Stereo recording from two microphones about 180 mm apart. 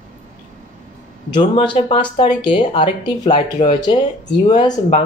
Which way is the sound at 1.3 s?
30° left (ahead or behind).